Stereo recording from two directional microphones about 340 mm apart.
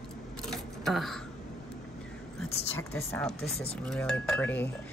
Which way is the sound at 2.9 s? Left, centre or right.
Centre.